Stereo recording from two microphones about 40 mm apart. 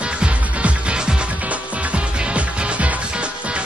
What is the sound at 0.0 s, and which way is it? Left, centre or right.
Music, right.